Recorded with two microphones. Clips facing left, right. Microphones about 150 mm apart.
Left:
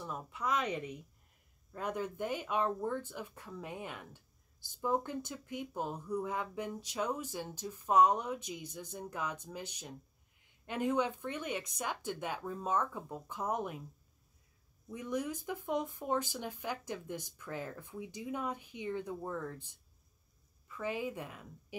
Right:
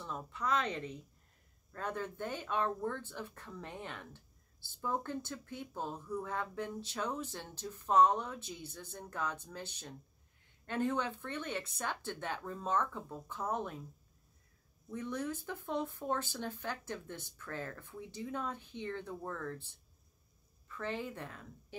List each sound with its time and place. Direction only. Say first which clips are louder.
0.0 s speech: left 1 dB; 10° left (ahead or behind)
14.9 s a woman's voice: left 1 dB; 10° left (ahead or behind)